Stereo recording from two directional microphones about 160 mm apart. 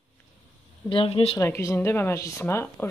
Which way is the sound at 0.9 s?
35° left (ahead or behind).